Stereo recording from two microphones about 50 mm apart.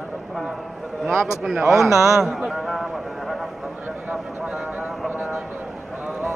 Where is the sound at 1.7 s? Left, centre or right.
Right.